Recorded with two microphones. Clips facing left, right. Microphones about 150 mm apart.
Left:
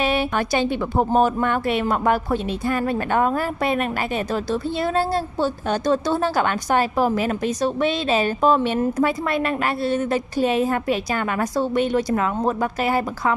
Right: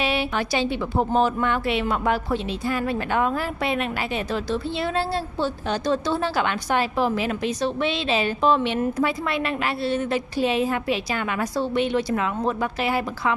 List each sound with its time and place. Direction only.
0.0 s speech: 50° left (ahead or behind)